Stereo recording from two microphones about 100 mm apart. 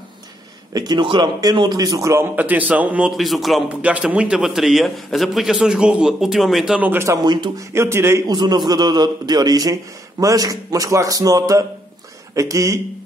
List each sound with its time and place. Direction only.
0.7 s a man's voice: 45° right (ahead or behind); by 3.1 s 15° right (ahead or behind)
3.1 s a man's voice: centre (ahead or behind)
3.8 s a man's voice: 15° right (ahead or behind)
6.8 s speech: 20° right (ahead or behind)
7.2 s speech: 45° right (ahead or behind)
7.7 s speech: 25° right (ahead or behind)
8.3 s a man's voice: 45° right (ahead or behind)